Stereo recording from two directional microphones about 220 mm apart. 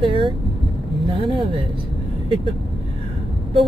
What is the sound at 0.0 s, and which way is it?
Vehicle, 25° right (ahead or behind).